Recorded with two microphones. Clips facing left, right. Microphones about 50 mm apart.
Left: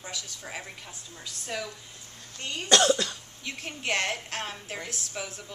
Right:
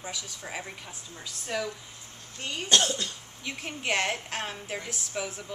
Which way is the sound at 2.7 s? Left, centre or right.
Left.